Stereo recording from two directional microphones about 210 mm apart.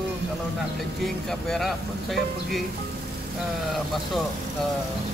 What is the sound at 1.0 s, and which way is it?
Speech, centre (ahead or behind).